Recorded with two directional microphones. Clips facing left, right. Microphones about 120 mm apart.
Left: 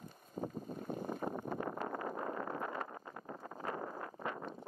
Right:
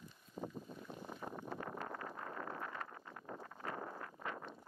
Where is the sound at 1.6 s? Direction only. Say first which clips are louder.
Left 6 dB; 20° left (ahead or behind).